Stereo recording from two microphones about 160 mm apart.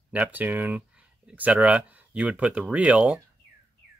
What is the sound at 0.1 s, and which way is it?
Speech, 10° right (ahead or behind).